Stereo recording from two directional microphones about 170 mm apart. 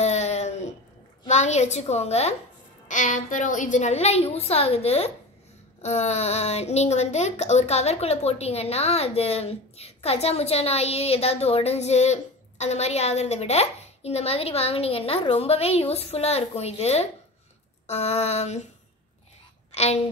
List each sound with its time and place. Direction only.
0.0 s a sound: 40° left (ahead or behind)
1.2 s speech: 45° left (ahead or behind)
19.7 s speech: 40° left (ahead or behind)